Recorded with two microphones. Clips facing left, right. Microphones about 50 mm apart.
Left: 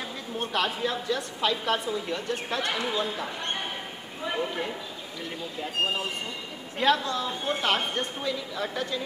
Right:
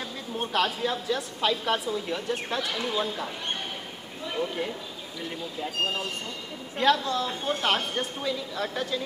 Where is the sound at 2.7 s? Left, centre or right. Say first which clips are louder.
Left 1 dB; centre.